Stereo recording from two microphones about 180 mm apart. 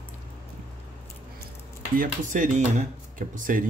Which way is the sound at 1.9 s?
50° right (ahead or behind).